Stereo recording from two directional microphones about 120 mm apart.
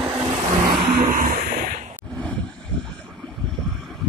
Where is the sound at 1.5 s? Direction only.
80° right.